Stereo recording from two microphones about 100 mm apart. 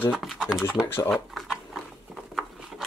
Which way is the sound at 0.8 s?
25° left (ahead or behind).